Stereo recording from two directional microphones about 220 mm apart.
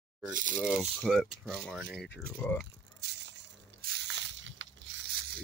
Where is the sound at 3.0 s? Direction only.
50° right (ahead or behind).